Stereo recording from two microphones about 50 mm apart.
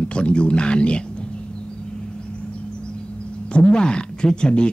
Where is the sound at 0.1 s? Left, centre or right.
Left.